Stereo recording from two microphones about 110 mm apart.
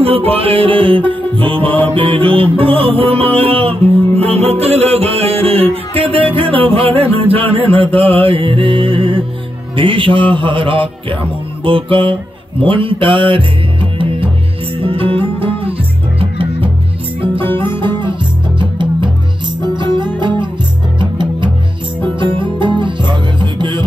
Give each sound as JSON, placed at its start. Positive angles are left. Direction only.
{"t": 0.0, "sound": "music", "side_deg": -60}
{"t": 9.8, "sound": "a man's voice", "side_deg": -50}
{"t": 11.6, "sound": "mantra", "side_deg": -55}
{"t": 14.8, "sound": "music", "side_deg": -55}